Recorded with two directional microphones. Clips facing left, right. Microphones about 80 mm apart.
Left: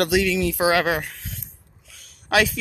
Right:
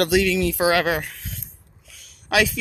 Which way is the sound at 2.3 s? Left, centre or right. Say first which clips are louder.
Even; left.